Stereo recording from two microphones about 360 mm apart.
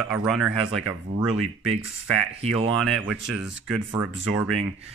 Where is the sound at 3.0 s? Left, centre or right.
Centre.